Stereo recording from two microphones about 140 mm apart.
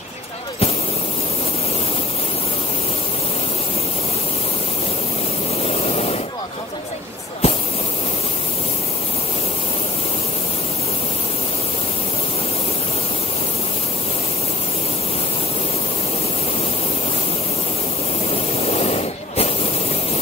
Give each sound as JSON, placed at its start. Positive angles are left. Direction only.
{"t": 5.6, "sound": "static", "side_deg": 45}
{"t": 7.4, "sound": "spray", "side_deg": 45}
{"t": 18.3, "sound": "spray", "side_deg": 45}